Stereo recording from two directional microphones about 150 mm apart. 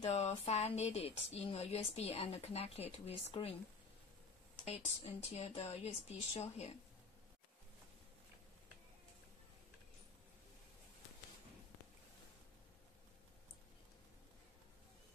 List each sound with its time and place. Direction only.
0.0 s speech: 45° left (ahead or behind)
4.6 s speech: 45° left (ahead or behind)